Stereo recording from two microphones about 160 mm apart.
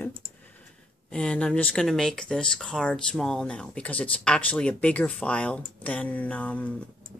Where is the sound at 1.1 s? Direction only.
5° left (ahead or behind).